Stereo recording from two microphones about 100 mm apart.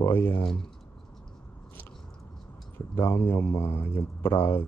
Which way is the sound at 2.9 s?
25° left (ahead or behind).